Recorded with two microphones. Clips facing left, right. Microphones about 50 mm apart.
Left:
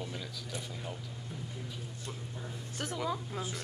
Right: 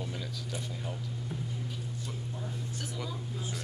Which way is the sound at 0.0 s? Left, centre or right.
Centre.